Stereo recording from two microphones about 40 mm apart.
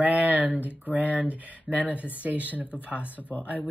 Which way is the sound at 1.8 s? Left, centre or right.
Left.